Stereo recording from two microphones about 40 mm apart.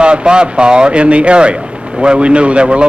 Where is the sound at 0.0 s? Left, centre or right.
Right.